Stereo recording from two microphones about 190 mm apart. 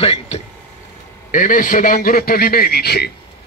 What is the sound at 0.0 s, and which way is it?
Speech, 30° left (ahead or behind).